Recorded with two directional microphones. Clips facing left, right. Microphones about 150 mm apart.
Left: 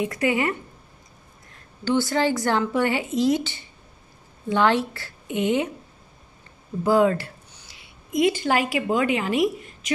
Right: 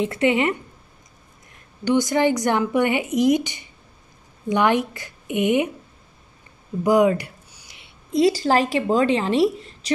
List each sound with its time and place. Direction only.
0.0 s speech: 25° right (ahead or behind)
1.9 s speech: 15° right (ahead or behind)
6.8 s a sound: 15° right (ahead or behind)
8.1 s a woman's voice: 35° right (ahead or behind)